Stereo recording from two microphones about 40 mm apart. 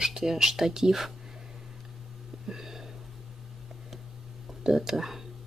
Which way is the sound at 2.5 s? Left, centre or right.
Centre.